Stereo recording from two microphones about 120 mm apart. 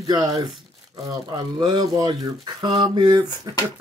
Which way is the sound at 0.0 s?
30° right (ahead or behind).